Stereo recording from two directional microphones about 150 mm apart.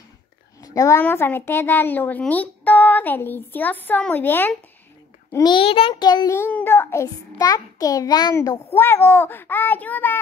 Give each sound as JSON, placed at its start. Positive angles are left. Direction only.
{"t": 0.6, "sound": "a sound", "side_deg": 25}
{"t": 1.0, "sound": "speech", "side_deg": 15}
{"t": 5.4, "sound": "a child's voice", "side_deg": 35}
{"t": 6.3, "sound": "a child's voice", "side_deg": 15}